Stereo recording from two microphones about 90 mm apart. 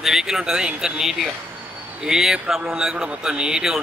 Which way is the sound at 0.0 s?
5° right (ahead or behind).